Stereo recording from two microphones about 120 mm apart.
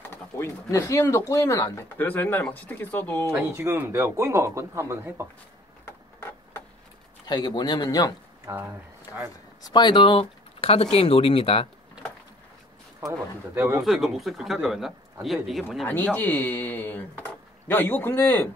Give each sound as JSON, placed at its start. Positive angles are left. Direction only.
{"t": 0.1, "sound": "speech", "side_deg": 20}
{"t": 3.3, "sound": "a man's voice", "side_deg": -20}
{"t": 7.2, "sound": "speech", "side_deg": 35}
{"t": 8.5, "sound": "a man's voice", "side_deg": -25}
{"t": 9.1, "sound": "speech", "side_deg": 25}
{"t": 13.7, "sound": "speech", "side_deg": 0}
{"t": 15.9, "sound": "speech", "side_deg": 15}